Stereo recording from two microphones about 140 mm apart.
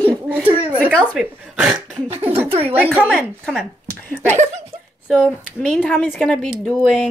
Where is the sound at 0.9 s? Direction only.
5° right (ahead or behind).